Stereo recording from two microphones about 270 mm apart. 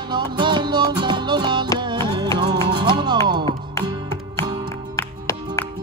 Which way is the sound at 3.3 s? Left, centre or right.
Centre.